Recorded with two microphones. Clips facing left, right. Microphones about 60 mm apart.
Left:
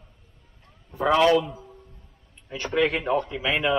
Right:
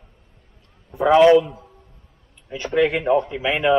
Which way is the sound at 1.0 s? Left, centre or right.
Centre.